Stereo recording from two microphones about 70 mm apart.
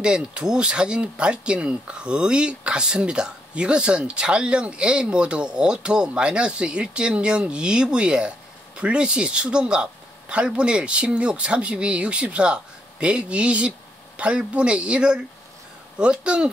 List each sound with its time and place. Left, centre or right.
0.0 s speech: centre